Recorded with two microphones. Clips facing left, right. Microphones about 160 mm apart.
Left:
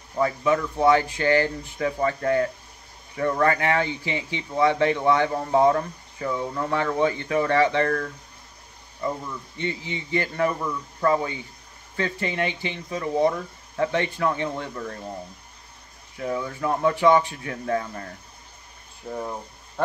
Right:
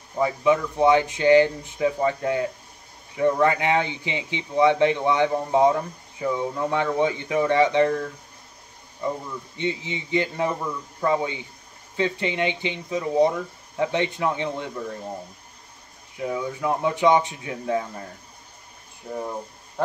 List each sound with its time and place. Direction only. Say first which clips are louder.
0.2 s speech: right 1 dB; 15° right (ahead or behind)
9.6 s speech: right 2 dB; 15° right (ahead or behind)
16.2 s speech: right 1 dB; 15° right (ahead or behind)